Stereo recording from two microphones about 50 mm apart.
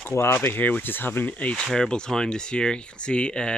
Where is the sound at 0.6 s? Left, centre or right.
Left.